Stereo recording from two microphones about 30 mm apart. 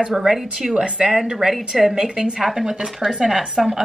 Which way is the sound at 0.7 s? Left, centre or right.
Right.